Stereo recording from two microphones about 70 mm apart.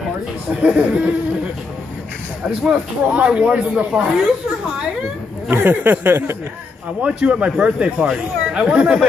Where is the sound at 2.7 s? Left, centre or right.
Centre.